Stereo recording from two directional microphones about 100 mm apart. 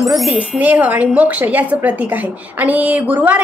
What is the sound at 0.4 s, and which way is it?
Speech, 15° right (ahead or behind).